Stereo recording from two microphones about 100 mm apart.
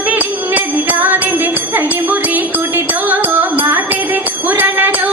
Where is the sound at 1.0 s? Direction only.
20° right (ahead or behind).